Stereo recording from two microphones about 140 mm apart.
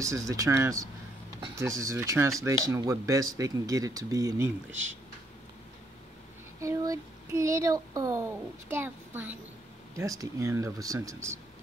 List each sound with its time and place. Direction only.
0.0 s speech: 20° right (ahead or behind)
6.6 s speech: 25° right (ahead or behind)
9.9 s speech: 25° right (ahead or behind)